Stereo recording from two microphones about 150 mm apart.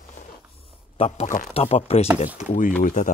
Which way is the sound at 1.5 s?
40° left (ahead or behind).